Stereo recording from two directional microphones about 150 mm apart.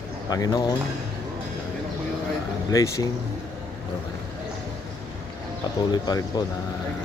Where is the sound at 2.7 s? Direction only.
20° left (ahead or behind).